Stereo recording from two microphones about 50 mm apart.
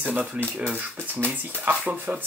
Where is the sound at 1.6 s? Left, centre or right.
Right.